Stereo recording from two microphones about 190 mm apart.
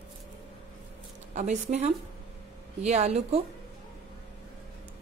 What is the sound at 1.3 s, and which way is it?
A woman's voice, 35° right (ahead or behind).